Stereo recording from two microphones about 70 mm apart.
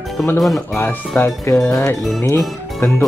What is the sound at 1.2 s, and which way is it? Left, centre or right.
Speech, left.